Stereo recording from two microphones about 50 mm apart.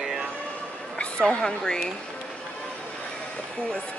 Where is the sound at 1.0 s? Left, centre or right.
Centre.